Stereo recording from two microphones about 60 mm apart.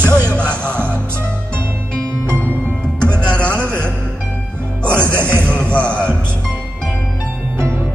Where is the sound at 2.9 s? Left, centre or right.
Centre.